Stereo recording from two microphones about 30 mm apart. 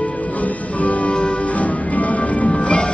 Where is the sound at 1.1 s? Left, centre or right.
Left.